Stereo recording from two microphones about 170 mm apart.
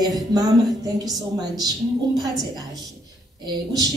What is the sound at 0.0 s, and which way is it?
Speech, 20° right (ahead or behind).